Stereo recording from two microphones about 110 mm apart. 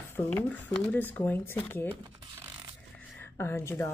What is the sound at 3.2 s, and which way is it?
Speech, 20° left (ahead or behind).